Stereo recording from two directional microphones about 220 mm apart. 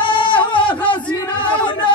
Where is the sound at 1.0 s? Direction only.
20° left (ahead or behind).